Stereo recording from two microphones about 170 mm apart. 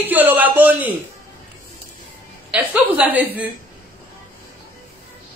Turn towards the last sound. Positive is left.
turn(degrees=-10)  # may be behind; listen again after turning